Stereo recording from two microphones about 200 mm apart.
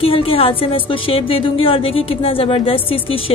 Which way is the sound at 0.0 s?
30° left (ahead or behind).